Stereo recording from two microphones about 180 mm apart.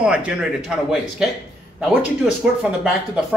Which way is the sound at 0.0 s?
5° right (ahead or behind).